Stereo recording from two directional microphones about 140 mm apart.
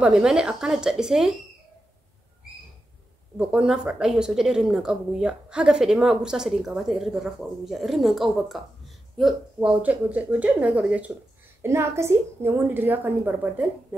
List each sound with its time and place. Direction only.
0.0 s a woman's voice: 5° right (ahead or behind)
3.3 s a woman's voice: 5° right (ahead or behind)
11.6 s a woman's voice: 20° right (ahead or behind)